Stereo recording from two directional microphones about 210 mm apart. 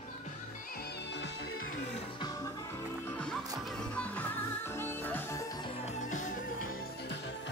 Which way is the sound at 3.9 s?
5° left (ahead or behind).